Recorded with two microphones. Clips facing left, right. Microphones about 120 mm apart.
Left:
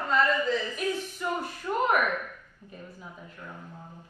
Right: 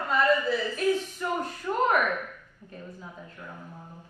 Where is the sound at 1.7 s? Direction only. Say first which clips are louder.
Right 1 dB; 15° left (ahead or behind).